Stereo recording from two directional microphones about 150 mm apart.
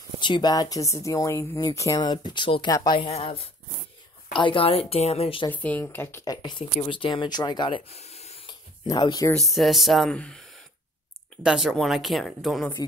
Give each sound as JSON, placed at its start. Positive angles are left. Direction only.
{"t": 0.2, "sound": "speech", "side_deg": 30}
{"t": 3.1, "sound": "a woman's voice", "side_deg": 40}
{"t": 5.5, "sound": "speech", "side_deg": 10}
{"t": 6.3, "sound": "speech", "side_deg": 30}
{"t": 8.8, "sound": "speech", "side_deg": 25}
{"t": 9.5, "sound": "speech", "side_deg": 0}
{"t": 11.4, "sound": "speech", "side_deg": -5}